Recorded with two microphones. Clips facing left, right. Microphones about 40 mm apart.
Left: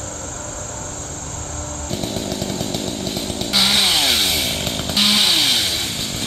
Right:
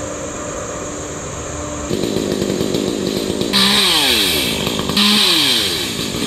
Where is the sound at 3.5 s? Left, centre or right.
Right.